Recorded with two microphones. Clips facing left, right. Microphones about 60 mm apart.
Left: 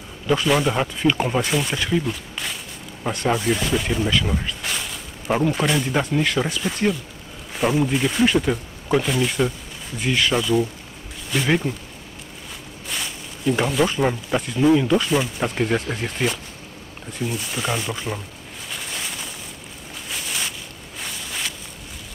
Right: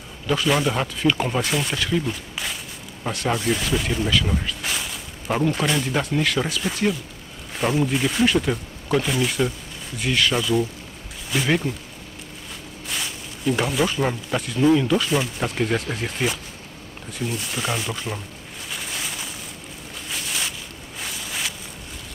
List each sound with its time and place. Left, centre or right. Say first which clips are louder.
0.3 s speech: left 2 dB; centre
1.8 s a sound: left 1 dB; centre
3.3 s speech: left 2 dB; centre
12.8 s speech: even; centre
18.7 s a sound: even; centre
21.0 s walk: even; centre